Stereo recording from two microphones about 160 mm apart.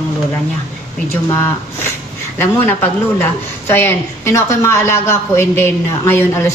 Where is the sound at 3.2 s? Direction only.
15° left (ahead or behind).